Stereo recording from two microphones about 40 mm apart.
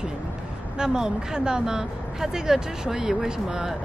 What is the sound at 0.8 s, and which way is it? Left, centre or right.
Speech, centre.